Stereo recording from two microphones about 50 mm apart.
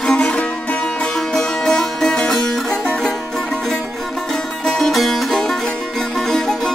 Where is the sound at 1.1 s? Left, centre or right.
Centre.